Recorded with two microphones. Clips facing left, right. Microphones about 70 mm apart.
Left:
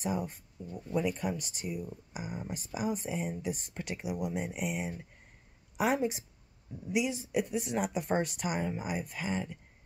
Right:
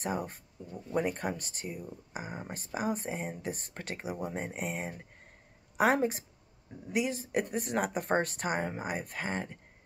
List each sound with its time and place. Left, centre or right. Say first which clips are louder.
0.0 s speech: even; right